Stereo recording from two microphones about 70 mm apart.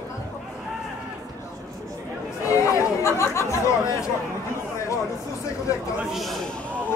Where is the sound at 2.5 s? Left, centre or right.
Left.